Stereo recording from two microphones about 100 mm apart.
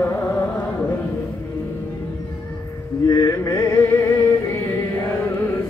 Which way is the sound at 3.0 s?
30° left (ahead or behind).